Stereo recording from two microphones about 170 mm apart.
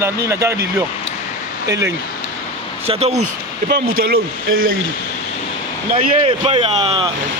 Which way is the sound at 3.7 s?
65° right (ahead or behind).